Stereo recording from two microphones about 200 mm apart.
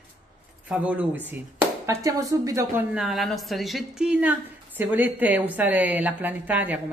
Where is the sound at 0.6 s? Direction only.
5° right (ahead or behind).